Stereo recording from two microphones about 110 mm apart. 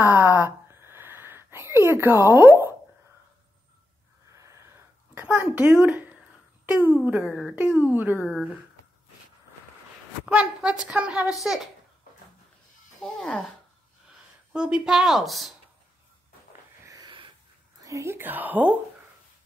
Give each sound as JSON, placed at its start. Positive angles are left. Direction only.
{"t": 0.0, "sound": "a sound", "side_deg": -15}
{"t": 1.9, "sound": "speech", "side_deg": -20}
{"t": 5.1, "sound": "a woman's voice", "side_deg": -15}
{"t": 10.2, "sound": "a woman's voice", "side_deg": -5}
{"t": 13.0, "sound": "speech", "side_deg": 10}
{"t": 14.5, "sound": "a woman's voice", "side_deg": -10}
{"t": 16.8, "sound": "wheeze", "side_deg": -35}
{"t": 17.8, "sound": "a woman's voice", "side_deg": -25}